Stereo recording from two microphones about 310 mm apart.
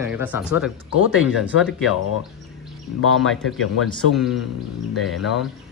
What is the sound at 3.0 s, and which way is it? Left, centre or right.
Speech, left.